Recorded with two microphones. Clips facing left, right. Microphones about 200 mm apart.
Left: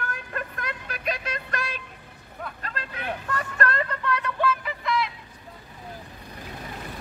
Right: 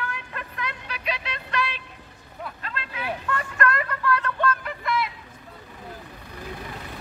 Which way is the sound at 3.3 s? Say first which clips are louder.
Right 2 dB; 35° left (ahead or behind).